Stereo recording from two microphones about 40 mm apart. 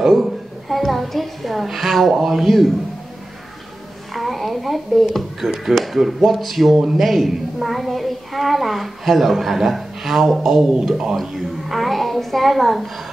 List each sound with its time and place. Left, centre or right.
0.1 s a child's voice: centre
4.1 s a woman's voice: centre
10.6 s speech: centre
11.1 s a child's voice: centre